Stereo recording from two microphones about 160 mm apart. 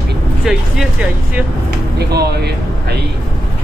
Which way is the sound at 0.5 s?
5° right (ahead or behind).